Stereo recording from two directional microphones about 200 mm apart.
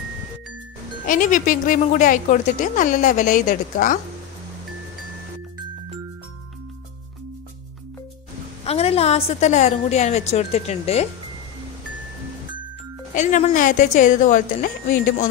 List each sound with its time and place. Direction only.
1.0 s speech: 40° left (ahead or behind)
8.6 s speech: 30° left (ahead or behind)
13.1 s speech: 35° left (ahead or behind)